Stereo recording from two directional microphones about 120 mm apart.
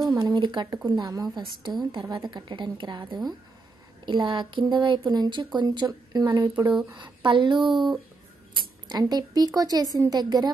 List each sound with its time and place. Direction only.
0.0 s a sound: 30° right (ahead or behind)
0.4 s speech: 40° right (ahead or behind)
8.8 s speech: 35° right (ahead or behind)